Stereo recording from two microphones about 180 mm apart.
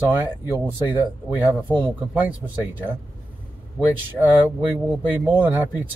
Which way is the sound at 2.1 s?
10° right (ahead or behind).